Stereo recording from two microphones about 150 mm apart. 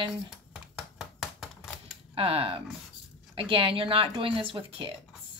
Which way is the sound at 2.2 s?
40° right (ahead or behind).